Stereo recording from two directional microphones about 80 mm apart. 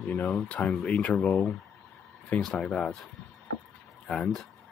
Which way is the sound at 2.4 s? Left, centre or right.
Centre.